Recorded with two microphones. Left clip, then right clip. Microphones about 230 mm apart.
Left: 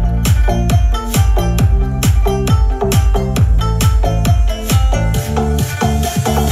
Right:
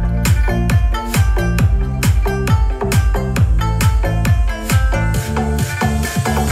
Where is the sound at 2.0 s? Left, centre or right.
Right.